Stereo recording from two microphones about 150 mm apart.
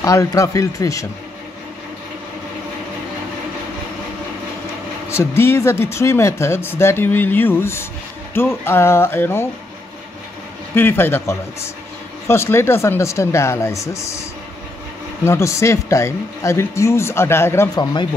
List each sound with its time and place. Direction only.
0.0 s speech: 20° left (ahead or behind)
5.1 s speech: 15° left (ahead or behind)
10.7 s speech: 15° left (ahead or behind)
15.2 s speech: 20° left (ahead or behind)